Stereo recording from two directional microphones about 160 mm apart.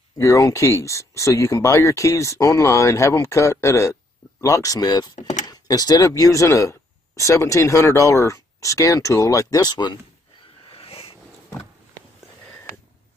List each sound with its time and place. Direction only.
0.2 s speech: 20° left (ahead or behind)
10.7 s wild animals: 35° left (ahead or behind)